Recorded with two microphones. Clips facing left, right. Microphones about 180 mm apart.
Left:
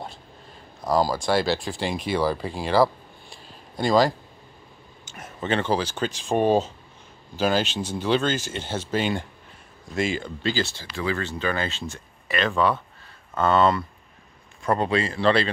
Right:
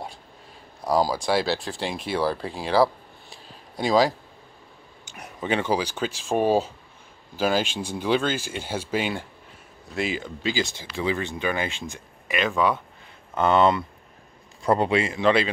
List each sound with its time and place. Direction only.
0.8 s speech: 10° right (ahead or behind)